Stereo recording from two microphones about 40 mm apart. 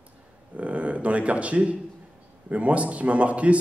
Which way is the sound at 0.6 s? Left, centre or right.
Right.